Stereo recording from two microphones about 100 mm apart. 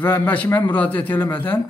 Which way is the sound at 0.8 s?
15° left (ahead or behind).